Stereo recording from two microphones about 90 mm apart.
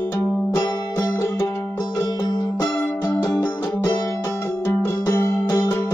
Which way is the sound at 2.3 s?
50° left (ahead or behind).